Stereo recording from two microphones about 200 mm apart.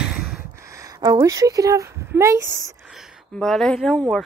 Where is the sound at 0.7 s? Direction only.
15° right (ahead or behind).